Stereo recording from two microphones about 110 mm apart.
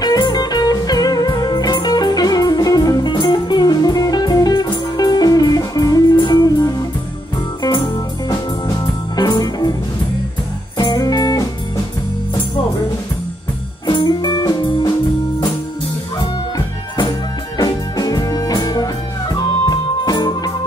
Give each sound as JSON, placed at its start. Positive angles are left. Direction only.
{"t": 0.0, "sound": "music", "side_deg": 35}
{"t": 8.8, "sound": "music", "side_deg": 35}
{"t": 10.8, "sound": "music", "side_deg": 35}
{"t": 13.8, "sound": "music", "side_deg": 40}
{"t": 17.6, "sound": "music", "side_deg": 35}